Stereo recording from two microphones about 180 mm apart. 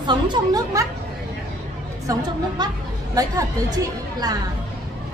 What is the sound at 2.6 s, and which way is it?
A woman's voice, 25° right (ahead or behind).